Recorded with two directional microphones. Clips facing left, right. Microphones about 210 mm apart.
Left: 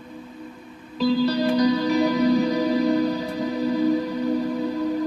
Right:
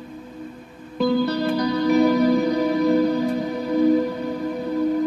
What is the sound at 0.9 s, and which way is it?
Music, 55° right (ahead or behind).